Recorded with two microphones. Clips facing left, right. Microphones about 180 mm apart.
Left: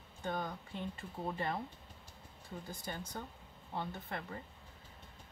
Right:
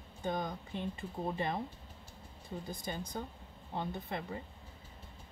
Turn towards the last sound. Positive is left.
turn(degrees=-15)  # may be behind; listen again after turning